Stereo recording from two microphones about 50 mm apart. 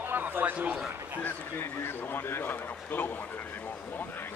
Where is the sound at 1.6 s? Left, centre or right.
Left.